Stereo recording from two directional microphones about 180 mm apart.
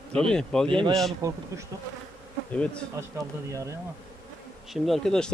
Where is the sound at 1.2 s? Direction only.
20° right (ahead or behind).